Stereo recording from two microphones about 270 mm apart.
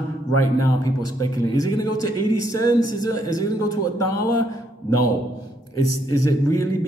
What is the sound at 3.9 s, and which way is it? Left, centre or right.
Speech, left.